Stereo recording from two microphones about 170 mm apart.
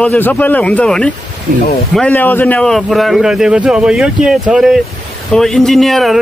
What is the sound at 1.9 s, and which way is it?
A man's voice, 10° left (ahead or behind).